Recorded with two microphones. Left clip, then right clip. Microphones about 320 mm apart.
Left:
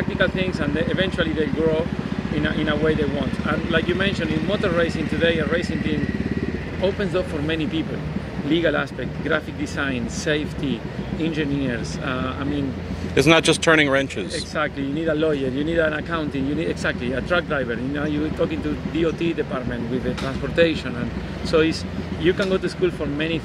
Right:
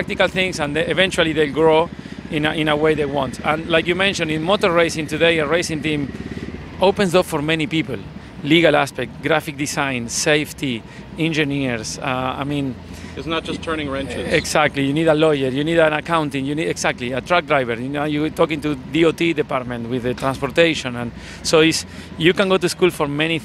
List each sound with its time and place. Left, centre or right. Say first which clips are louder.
0.2 s speech: right 4 dB; right
13.1 s speech: left 9 dB; left
14.5 s speech: right 4 dB; right